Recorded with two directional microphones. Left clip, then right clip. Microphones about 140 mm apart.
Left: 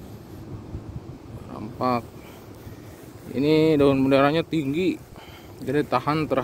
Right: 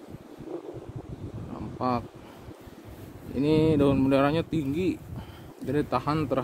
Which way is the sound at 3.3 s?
5° right (ahead or behind).